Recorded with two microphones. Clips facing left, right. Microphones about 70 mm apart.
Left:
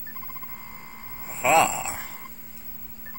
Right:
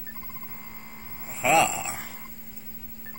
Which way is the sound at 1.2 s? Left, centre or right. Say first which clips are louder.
Left 2 dB; centre.